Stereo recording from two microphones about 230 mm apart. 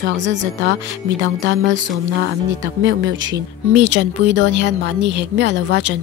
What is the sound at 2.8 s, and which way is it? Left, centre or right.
Speech, right.